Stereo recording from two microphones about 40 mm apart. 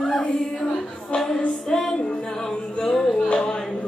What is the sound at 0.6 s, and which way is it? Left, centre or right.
Music, left.